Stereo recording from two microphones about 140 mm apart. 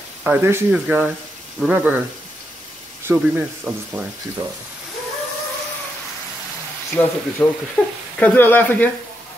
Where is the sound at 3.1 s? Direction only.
15° right (ahead or behind).